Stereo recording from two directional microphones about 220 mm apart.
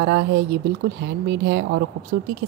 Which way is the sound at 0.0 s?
45° right (ahead or behind).